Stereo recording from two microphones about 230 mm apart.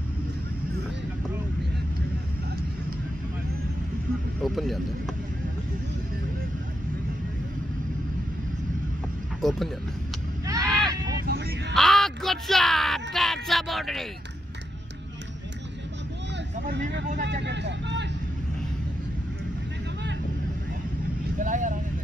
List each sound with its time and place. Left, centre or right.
4.4 s speech: centre
9.4 s speech: centre
10.4 s a sound: centre
11.2 s a sound: right
11.7 s speech: centre
17.2 s speech: right
21.4 s speech: right